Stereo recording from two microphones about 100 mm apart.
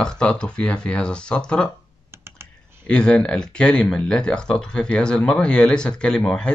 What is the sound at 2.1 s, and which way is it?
Computer keyboard, 25° right (ahead or behind).